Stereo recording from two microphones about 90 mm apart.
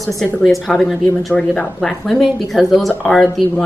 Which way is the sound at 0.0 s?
Centre (ahead or behind).